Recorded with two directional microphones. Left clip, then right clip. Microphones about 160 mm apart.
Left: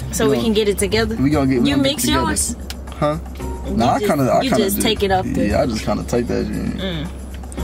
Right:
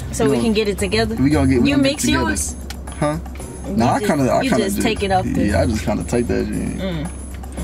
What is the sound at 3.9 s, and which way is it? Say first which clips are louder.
A man's voice: left 1 dB; 10° right (ahead or behind).